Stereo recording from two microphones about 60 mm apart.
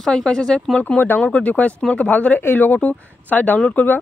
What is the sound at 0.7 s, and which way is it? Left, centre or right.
Speech, left.